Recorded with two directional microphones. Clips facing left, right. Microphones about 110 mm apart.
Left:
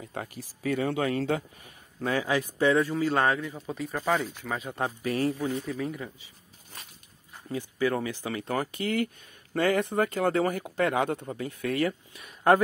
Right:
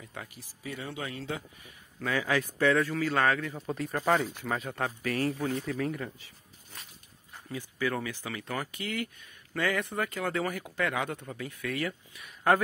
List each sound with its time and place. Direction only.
0.0 s speech: 40° left (ahead or behind)
0.6 s a man's voice: 60° left (ahead or behind); by 2.2 s 30° left (ahead or behind)
2.2 s a man's voice: 20° left (ahead or behind)
3.5 s speech: 5° left (ahead or behind)
4.7 s a man's voice: 20° left (ahead or behind)
5.4 s speech: 10° left (ahead or behind)
7.4 s speech: 30° left (ahead or behind)